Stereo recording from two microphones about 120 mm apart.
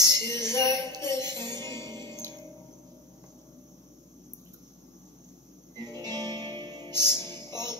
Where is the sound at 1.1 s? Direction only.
25° left (ahead or behind).